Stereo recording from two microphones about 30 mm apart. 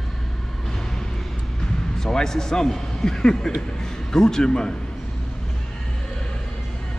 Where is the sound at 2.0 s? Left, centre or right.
Centre.